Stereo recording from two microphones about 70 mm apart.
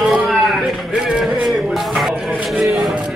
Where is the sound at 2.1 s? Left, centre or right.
Centre.